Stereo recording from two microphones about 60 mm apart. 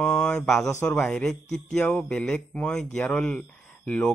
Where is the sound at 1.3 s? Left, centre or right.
Centre.